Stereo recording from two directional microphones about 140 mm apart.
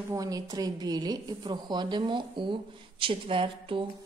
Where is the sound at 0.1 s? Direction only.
25° right (ahead or behind).